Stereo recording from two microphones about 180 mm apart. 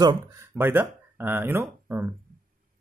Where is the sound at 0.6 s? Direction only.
10° right (ahead or behind).